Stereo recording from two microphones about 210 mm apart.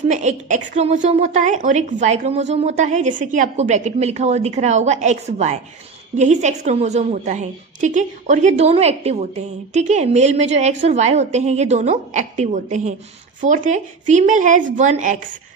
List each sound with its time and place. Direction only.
0.1 s a woman's voice: 35° right (ahead or behind)